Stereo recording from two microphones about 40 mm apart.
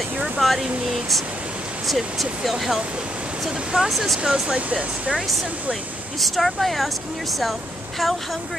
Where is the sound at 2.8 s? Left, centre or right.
Right.